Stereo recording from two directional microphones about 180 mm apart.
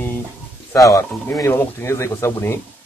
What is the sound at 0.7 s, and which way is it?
Speech, 20° left (ahead or behind).